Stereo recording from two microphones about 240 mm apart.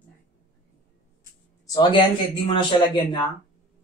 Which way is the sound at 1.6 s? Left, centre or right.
Centre.